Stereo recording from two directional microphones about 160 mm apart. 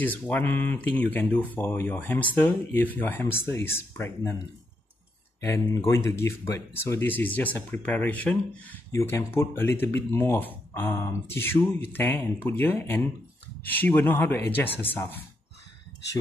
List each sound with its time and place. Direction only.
0.3 s speech: 10° left (ahead or behind)
5.9 s speech: 15° left (ahead or behind)